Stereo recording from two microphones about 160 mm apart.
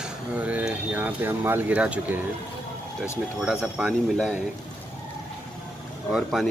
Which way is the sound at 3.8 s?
Centre (ahead or behind).